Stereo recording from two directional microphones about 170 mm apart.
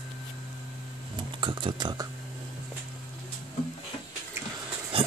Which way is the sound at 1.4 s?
25° right (ahead or behind).